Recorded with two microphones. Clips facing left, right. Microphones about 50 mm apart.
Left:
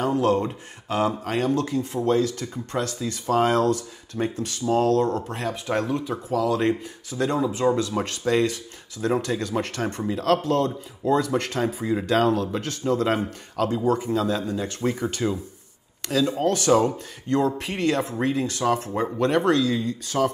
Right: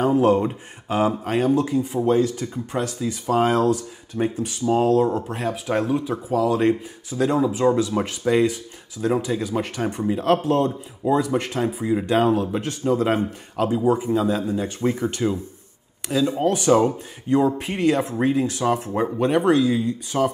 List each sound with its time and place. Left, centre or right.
0.0 s speech: centre
10.0 s speech: right
10.7 s speech: centre